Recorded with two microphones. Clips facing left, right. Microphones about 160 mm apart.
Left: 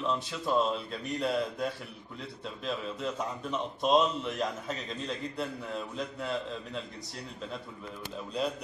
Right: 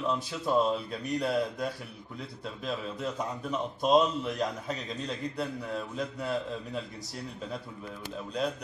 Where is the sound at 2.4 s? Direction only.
5° right (ahead or behind).